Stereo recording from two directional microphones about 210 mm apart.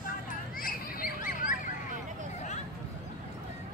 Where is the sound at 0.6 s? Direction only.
40° left (ahead or behind).